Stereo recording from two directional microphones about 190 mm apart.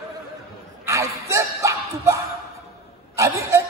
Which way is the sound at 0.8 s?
15° right (ahead or behind).